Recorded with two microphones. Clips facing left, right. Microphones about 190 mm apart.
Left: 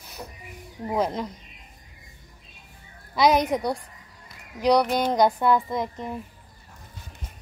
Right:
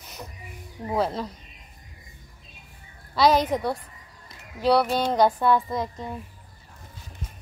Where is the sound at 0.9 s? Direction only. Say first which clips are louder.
Even; 15° left (ahead or behind).